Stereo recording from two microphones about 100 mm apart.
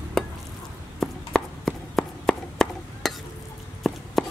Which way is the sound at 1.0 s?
5° left (ahead or behind).